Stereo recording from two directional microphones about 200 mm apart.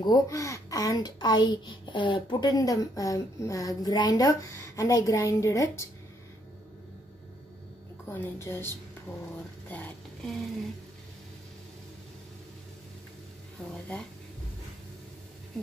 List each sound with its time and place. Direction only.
0.0 s a woman's voice: 15° left (ahead or behind)
8.1 s a woman's voice: 10° left (ahead or behind)
9.7 s a sound: 10° left (ahead or behind)
13.7 s speech: 5° left (ahead or behind)